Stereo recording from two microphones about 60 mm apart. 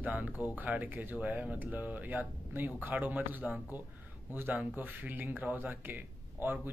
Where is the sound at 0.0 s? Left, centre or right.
Right.